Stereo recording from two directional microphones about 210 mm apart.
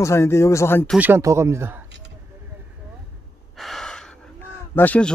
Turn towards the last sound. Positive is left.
turn(degrees=5)  # may be behind; listen again after turning